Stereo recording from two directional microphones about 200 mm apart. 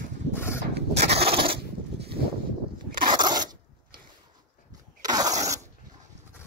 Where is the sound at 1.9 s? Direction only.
55° right (ahead or behind).